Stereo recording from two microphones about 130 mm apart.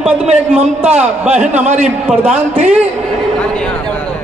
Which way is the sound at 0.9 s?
10° right (ahead or behind).